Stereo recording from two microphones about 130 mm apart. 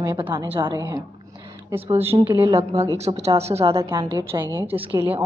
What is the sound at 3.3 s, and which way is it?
Speech, 55° right (ahead or behind).